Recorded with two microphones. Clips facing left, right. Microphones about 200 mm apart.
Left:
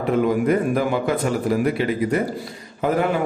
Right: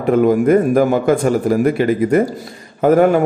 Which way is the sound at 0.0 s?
50° right (ahead or behind).